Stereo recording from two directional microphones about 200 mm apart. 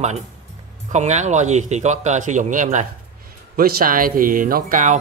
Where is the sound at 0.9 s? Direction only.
35° right (ahead or behind).